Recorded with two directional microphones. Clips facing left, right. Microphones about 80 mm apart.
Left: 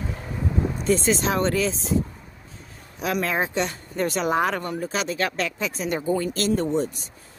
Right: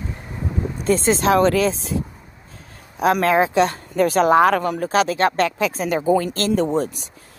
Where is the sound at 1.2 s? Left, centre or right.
Right.